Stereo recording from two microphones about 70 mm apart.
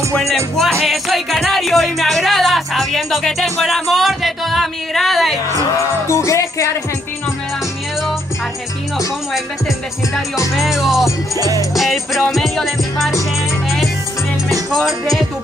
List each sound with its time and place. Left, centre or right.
0.6 s music: centre
6.0 s music: left
10.5 s speech: centre
11.3 s music: right
11.7 s speech: centre
14.7 s speech: centre